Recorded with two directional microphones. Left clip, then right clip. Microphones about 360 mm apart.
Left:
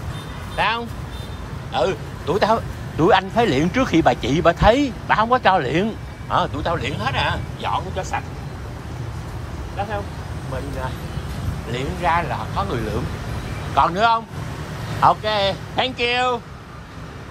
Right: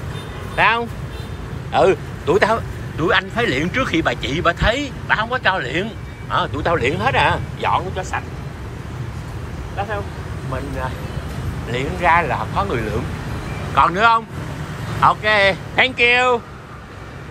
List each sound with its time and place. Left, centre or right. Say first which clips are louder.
0.6 s speech: right 5 dB; centre
11.7 s speech: right 5 dB; centre